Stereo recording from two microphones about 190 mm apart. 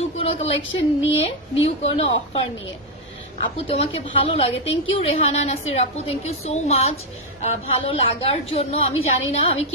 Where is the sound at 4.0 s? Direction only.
30° left (ahead or behind).